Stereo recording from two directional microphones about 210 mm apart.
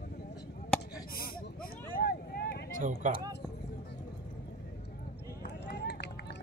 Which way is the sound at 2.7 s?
40° right (ahead or behind).